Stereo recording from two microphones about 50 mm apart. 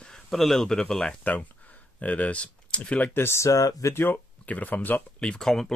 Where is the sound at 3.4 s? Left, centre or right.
Left.